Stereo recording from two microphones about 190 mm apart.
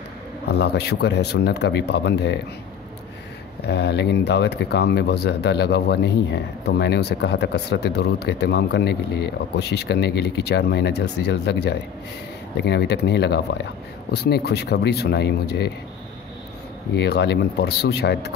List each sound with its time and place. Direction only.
0.5 s speech: 60° left (ahead or behind)
3.6 s speech: 60° left (ahead or behind)
16.9 s speech: 60° left (ahead or behind)